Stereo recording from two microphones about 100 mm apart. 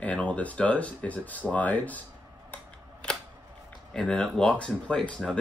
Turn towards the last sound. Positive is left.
turn(degrees=5)  # may be behind; listen again after turning